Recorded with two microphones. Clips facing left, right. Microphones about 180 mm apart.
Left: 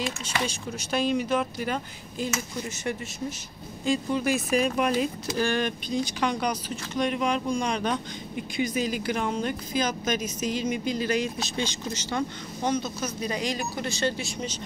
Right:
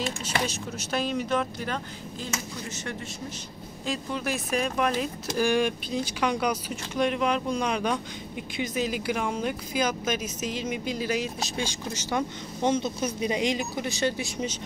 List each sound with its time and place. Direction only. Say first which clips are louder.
0.2 s speech: right 1 dB; 5° right (ahead or behind)
3.8 s speech: left 5 dB; centre (ahead or behind)
12.6 s speech: right 2 dB; 25° right (ahead or behind)